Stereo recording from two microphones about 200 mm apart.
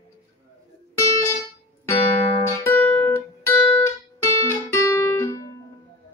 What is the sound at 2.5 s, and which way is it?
Music, 10° left (ahead or behind).